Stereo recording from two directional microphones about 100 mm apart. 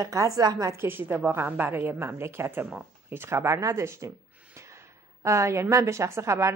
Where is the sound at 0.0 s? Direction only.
35° right (ahead or behind).